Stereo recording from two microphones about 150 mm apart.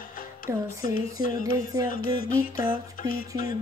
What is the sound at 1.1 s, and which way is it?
Music, 70° left (ahead or behind).